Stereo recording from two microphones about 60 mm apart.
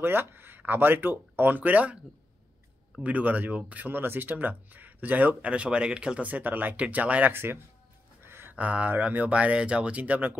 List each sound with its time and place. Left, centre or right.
0.0 s speech: right
3.0 s speech: right
5.5 s speech: centre
6.2 s speech: right
8.2 s a sound: right
8.5 s speech: right